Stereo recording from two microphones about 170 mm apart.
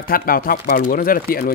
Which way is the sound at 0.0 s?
60° left (ahead or behind).